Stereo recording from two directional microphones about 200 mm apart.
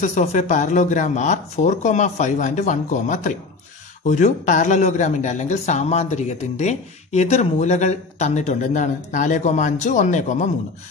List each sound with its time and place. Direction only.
0.0 s speech: 35° left (ahead or behind)